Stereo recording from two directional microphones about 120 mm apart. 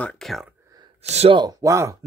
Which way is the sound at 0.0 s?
Centre (ahead or behind).